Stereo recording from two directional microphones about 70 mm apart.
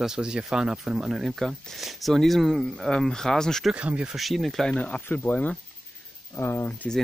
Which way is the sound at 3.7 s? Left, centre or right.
Centre.